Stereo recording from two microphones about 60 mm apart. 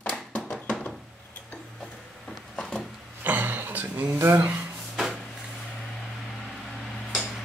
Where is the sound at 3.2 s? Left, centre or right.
Right.